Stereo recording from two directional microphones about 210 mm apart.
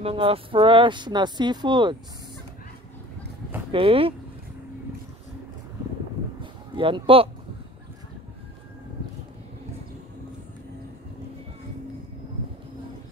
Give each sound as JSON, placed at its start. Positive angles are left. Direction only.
{"t": 0.0, "sound": "speech", "side_deg": -25}
{"t": 3.7, "sound": "speech", "side_deg": -25}
{"t": 6.4, "sound": "a sound", "side_deg": -25}